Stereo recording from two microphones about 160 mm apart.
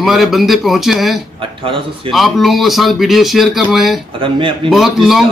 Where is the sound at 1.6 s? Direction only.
35° right (ahead or behind).